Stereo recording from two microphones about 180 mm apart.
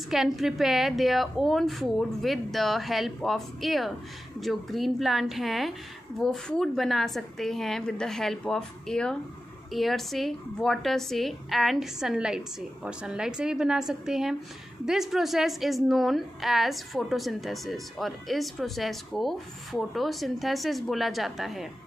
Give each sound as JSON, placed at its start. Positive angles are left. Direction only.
{"t": 0.1, "sound": "a woman's voice", "side_deg": 0}